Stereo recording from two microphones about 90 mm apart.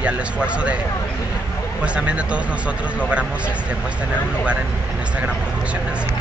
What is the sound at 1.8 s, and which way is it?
A man's voice, 15° right (ahead or behind).